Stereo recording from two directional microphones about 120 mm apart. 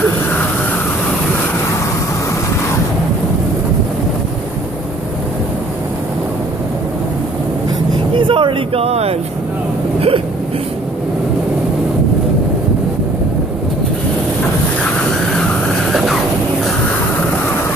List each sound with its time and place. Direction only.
8.2 s a sound: 45° right (ahead or behind)
9.9 s hiccup: 50° right (ahead or behind)
15.9 s vehicle: centre (ahead or behind)